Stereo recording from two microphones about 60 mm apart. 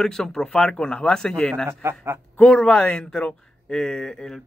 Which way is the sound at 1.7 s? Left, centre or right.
Right.